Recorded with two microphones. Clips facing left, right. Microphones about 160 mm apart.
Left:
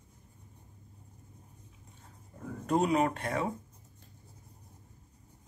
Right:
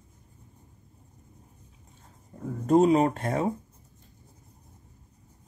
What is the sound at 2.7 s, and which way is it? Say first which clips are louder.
Speech: right 7 dB; 35° right (ahead or behind).